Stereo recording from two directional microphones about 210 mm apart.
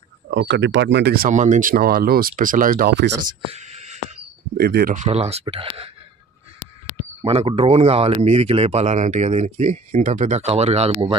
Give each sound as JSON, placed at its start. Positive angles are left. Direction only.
{"t": 0.3, "sound": "speech", "side_deg": -60}
{"t": 3.4, "sound": "whispering", "side_deg": -30}
{"t": 4.6, "sound": "speech", "side_deg": -50}
{"t": 5.0, "sound": "speech", "side_deg": -30}
{"t": 7.2, "sound": "speech", "side_deg": -25}